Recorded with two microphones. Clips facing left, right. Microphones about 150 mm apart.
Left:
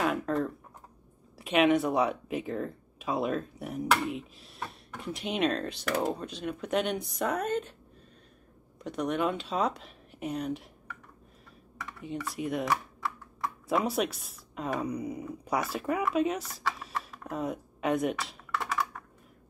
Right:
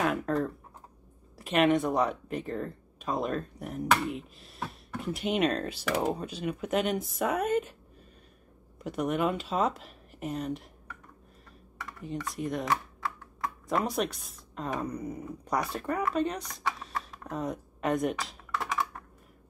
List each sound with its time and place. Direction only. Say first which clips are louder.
0.0 s speech: even; centre (ahead or behind)
8.7 s speech: right 1 dB; 5° right (ahead or behind)
11.8 s speech: even; centre (ahead or behind)
16.8 s a sound: even; centre (ahead or behind)